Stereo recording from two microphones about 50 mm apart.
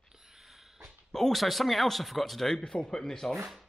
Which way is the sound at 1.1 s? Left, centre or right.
Centre.